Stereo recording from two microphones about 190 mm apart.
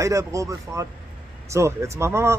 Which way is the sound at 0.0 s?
15° right (ahead or behind).